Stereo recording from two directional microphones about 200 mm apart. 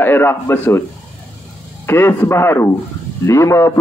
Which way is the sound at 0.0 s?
10° left (ahead or behind).